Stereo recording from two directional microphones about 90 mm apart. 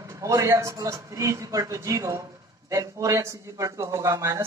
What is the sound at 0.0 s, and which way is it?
Speech, 35° right (ahead or behind).